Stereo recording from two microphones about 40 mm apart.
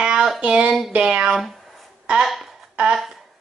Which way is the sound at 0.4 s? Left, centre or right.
Right.